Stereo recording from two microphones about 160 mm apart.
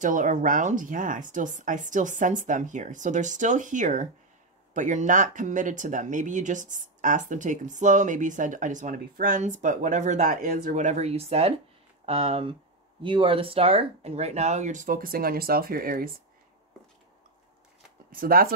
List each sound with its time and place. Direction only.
0.0 s speech: 55° right (ahead or behind)
18.1 s speech: 65° right (ahead or behind)